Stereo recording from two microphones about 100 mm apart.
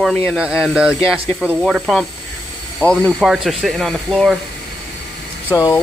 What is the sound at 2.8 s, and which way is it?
Speech, 10° left (ahead or behind).